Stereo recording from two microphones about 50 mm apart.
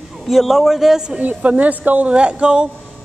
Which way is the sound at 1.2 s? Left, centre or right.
Right.